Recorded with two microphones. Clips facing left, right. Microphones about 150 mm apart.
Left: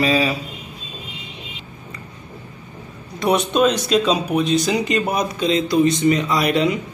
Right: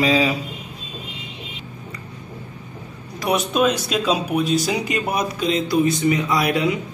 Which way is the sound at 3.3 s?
5° right (ahead or behind).